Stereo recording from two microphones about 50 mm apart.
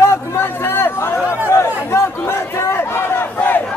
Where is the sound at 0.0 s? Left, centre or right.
Left.